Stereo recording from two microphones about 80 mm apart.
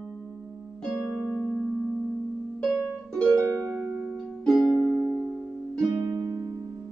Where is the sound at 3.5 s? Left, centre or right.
Centre.